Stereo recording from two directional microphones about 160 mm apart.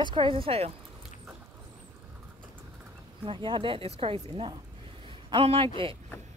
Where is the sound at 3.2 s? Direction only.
30° right (ahead or behind).